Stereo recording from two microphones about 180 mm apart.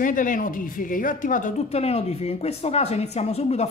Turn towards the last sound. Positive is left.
turn(degrees=35)  # may be behind; listen again after turning